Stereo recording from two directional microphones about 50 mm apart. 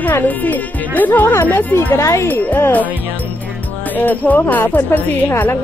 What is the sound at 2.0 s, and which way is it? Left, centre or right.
Speech, left.